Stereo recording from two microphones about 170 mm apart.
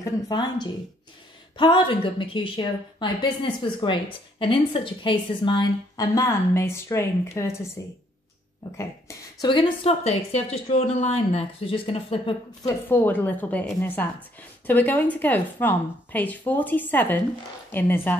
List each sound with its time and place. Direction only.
0.0 s a woman's voice: 25° left (ahead or behind)
8.7 s speech: 20° left (ahead or behind)
12.6 s a woman's voice: 10° left (ahead or behind)